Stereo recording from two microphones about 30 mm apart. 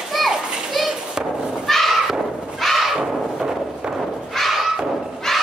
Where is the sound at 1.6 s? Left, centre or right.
Centre.